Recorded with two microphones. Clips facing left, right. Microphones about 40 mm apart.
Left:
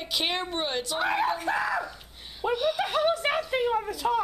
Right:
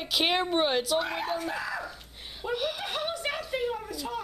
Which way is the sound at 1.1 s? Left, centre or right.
Centre.